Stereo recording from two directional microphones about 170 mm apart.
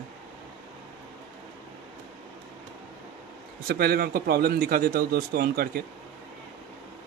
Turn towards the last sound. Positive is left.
turn(degrees=-65)  # may be behind; listen again after turning